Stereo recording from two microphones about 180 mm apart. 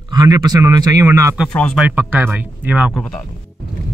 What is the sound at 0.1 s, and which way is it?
A man's voice, 20° right (ahead or behind).